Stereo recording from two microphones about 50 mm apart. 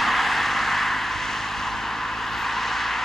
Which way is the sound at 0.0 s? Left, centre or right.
Centre.